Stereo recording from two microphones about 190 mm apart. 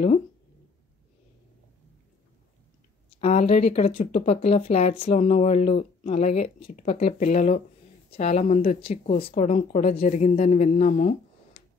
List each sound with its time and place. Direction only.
3.2 s speech: 35° left (ahead or behind)
11.6 s tick-tock: 65° left (ahead or behind)